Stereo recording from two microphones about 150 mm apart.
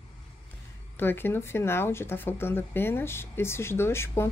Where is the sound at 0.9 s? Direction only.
15° left (ahead or behind).